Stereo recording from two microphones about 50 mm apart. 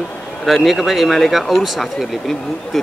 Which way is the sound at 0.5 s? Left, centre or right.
Centre.